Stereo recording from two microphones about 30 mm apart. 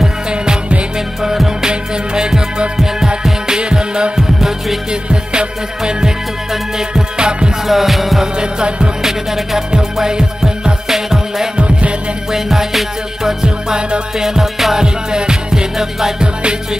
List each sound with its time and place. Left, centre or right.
0.3 s music: right
3.4 s music: right
4.2 s music: centre
5.3 s music: right
7.2 s music: right
7.6 s music: centre
8.4 s music: right
9.9 s music: right
10.9 s music: centre
11.5 s music: right
12.3 s music: centre
14.8 s music: right